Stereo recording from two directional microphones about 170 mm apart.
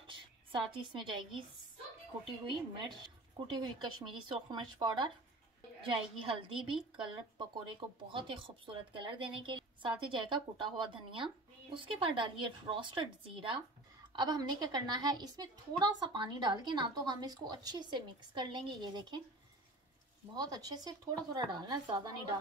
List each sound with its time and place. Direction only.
0.0 s a woman's voice: 30° right (ahead or behind)
2.4 s a woman's voice: 30° right (ahead or behind)
20.3 s speech: 25° right (ahead or behind)